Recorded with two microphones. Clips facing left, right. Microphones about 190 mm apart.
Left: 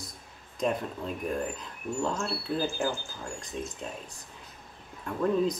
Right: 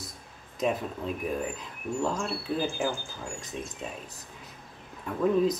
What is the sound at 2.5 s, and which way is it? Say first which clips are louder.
Speech: even; 10° right (ahead or behind).